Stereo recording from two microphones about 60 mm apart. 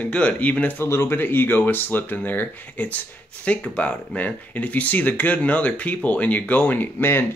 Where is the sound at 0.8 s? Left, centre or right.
Left.